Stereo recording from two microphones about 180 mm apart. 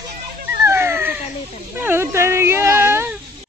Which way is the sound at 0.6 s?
15° right (ahead or behind).